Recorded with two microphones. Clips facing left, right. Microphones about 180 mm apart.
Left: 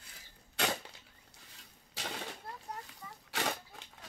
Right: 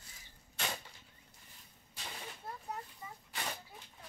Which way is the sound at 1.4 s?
90° left.